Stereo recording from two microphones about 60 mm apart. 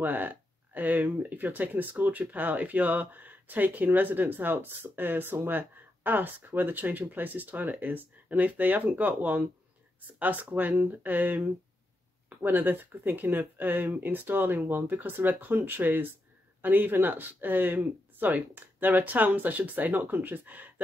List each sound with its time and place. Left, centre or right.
0.0 s speech: right